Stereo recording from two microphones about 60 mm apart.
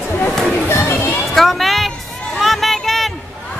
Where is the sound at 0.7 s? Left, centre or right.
Left.